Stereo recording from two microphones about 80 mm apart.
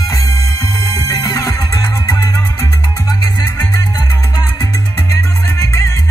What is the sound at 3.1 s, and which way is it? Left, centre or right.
Music, left.